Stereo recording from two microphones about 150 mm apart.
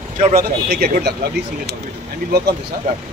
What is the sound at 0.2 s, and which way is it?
Speech, 70° right (ahead or behind).